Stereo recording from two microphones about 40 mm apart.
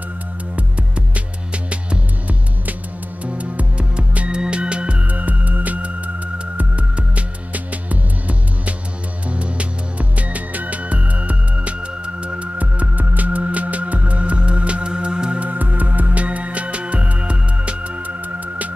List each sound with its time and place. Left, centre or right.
0.6 s music: right
5.0 s music: right
15.4 s music: right